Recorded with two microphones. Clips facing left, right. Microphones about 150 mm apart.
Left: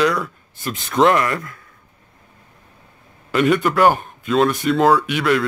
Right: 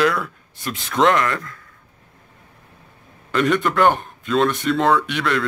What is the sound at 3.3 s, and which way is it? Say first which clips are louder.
A man's voice: left 2 dB; 5° left (ahead or behind).